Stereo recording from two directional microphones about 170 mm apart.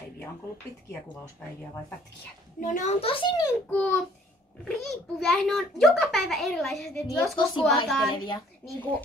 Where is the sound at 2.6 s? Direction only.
45° left (ahead or behind).